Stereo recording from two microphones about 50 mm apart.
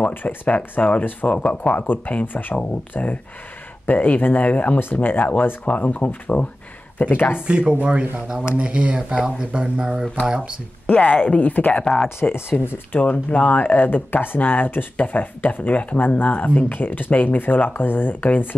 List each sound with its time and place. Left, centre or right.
0.1 s speech: left
0.6 s speech: left
7.3 s speech: centre
10.9 s speech: left
11.8 s speech: centre
12.2 s speech: left
13.0 s speech: left